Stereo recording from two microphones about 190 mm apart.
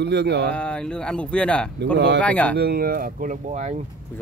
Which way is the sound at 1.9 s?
65° right (ahead or behind).